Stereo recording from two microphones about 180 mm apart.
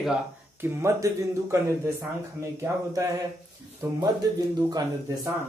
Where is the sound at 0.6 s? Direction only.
15° right (ahead or behind).